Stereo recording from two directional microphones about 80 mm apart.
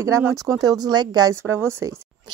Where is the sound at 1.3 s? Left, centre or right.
Right.